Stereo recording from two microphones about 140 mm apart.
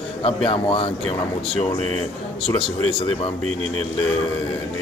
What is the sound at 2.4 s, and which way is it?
Speech, 40° left (ahead or behind).